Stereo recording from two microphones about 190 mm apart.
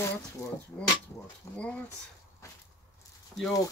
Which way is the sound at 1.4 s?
15° left (ahead or behind).